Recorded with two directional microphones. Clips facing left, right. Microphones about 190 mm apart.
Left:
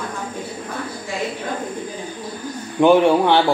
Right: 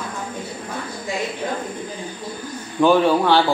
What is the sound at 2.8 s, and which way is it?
Speech, 20° left (ahead or behind).